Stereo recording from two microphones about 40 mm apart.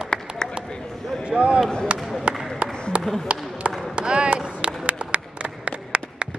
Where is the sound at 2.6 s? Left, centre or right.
Right.